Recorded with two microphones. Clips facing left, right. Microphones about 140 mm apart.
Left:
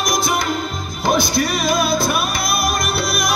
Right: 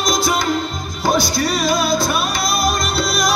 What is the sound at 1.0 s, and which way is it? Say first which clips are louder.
Music: even; 25° left (ahead or behind).